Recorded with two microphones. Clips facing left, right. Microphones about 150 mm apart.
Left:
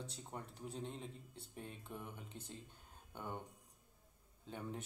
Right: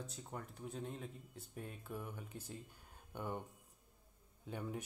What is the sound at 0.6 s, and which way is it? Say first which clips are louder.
Speech: right 1 dB; 30° left (ahead or behind).